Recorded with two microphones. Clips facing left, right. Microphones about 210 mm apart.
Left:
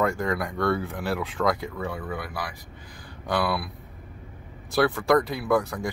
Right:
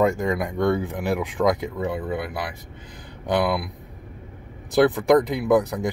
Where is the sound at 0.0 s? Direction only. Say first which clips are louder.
Right 4 dB; 20° right (ahead or behind).